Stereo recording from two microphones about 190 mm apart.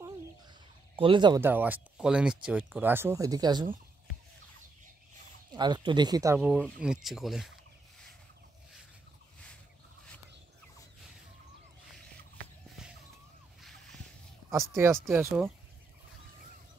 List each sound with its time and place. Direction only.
0.9 s speech: 25° right (ahead or behind)
1.4 s speech: 10° right (ahead or behind)
5.5 s speech: 20° right (ahead or behind); by 7.5 s centre (ahead or behind)
12.8 s a sound: 5° right (ahead or behind)
14.5 s speech: 15° right (ahead or behind)